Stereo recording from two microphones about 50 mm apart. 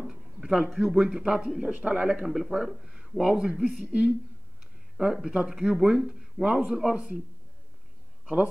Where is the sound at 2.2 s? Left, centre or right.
Centre.